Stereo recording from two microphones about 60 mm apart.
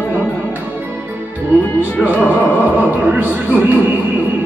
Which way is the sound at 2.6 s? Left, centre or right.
Right.